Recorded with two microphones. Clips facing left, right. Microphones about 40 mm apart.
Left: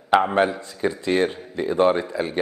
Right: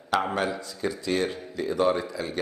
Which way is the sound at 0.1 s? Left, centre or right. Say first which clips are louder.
Left 7 dB; left.